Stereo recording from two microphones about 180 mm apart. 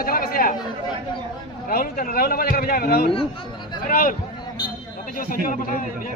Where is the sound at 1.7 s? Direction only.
55° left (ahead or behind).